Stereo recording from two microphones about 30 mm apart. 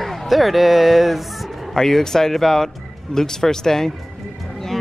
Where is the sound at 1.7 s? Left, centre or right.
Centre.